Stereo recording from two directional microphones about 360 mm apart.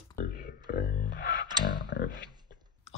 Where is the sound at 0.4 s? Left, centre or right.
Left.